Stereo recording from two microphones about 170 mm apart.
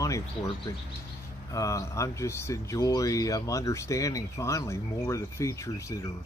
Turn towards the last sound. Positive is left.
turn(degrees=20)  # may be behind; listen again after turning